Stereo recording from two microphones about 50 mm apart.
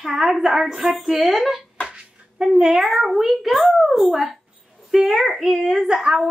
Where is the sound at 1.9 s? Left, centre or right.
Centre.